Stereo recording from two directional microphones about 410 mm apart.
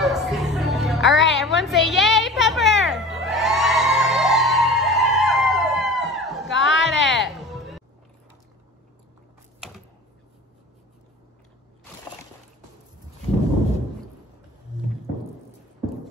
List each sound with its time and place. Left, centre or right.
0.0 s music: centre
6.5 s a sound: left
6.9 s music: centre